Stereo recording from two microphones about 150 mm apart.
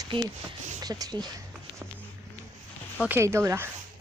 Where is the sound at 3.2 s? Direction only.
20° right (ahead or behind).